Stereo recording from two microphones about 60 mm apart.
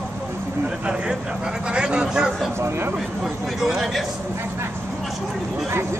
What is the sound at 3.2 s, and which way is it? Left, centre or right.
Speech, centre.